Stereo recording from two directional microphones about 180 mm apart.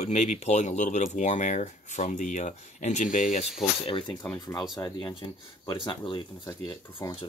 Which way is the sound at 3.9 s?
30° left (ahead or behind).